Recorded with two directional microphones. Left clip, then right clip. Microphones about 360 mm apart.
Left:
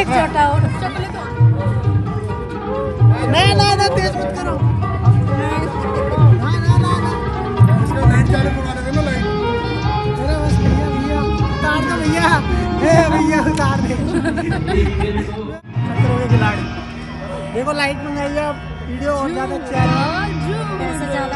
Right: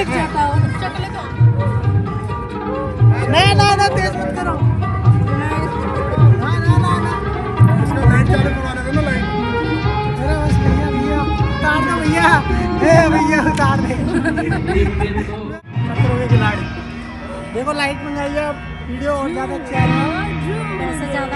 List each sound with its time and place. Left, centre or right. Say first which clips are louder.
0.0 s a sound: left 3 dB; centre
3.3 s music: right 1 dB; centre
6.4 s music: right 1 dB; centre
7.9 s music: right 2 dB; centre
9.2 s music: left 1 dB; left
11.6 s music: right 2 dB; centre
12.1 s vehicle: right 2 dB; centre
12.8 s a sound: right 1 dB; centre
14.1 s speech: right 2 dB; centre
16.0 s music: even; centre
17.6 s speech: even; centre